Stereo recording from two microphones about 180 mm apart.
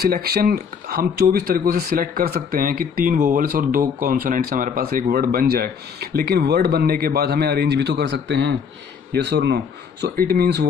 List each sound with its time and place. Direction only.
0.0 s speech: 60° right (ahead or behind); by 8.5 s 80° right
9.1 s speech: 70° right (ahead or behind)
10.1 s speech: 60° right (ahead or behind)